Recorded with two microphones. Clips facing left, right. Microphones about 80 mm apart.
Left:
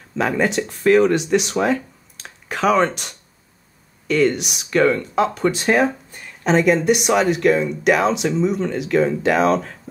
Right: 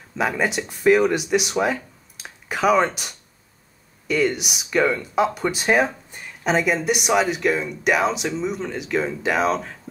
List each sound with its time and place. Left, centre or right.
0.2 s speech: centre